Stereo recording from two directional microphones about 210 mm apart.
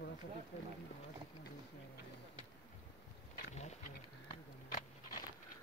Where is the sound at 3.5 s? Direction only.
30° left (ahead or behind).